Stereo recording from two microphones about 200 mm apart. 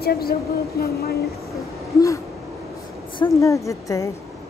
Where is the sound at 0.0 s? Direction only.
50° left (ahead or behind).